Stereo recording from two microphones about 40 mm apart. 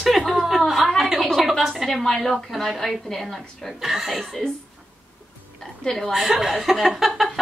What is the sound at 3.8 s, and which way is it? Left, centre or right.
Speech, centre.